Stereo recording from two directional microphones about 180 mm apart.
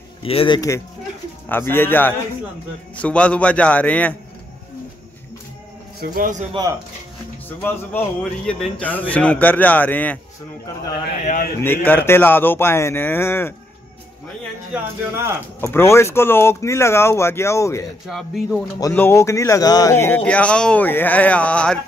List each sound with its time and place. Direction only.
0.2 s speech: 30° left (ahead or behind)
1.5 s speech: 10° left (ahead or behind)
5.9 s a man's voice: 50° right (ahead or behind)
7.4 s speech: 10° left (ahead or behind)
11.6 s speech: 10° left (ahead or behind)
14.7 s a man's voice: 15° right (ahead or behind)
15.6 s speech: 15° left (ahead or behind)
18.0 s speech: centre (ahead or behind)
18.8 s speech: 15° left (ahead or behind)